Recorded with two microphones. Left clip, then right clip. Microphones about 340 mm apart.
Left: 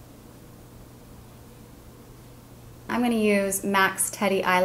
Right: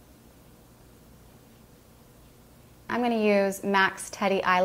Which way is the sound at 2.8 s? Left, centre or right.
Right.